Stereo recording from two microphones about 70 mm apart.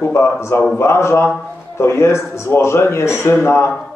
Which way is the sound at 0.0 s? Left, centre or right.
Left.